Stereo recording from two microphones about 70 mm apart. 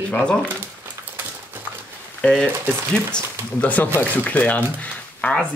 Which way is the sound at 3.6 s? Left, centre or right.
Left.